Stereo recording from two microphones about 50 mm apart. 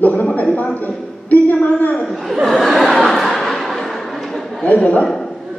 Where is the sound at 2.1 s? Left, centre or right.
Centre.